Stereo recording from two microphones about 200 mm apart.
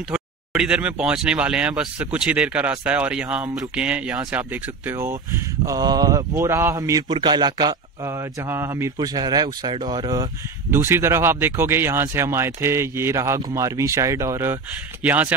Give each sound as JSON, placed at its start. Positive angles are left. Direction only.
{"t": 0.1, "sound": "speech", "side_deg": -5}